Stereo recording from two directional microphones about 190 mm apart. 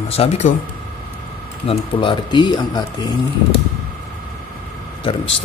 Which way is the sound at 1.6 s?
25° left (ahead or behind).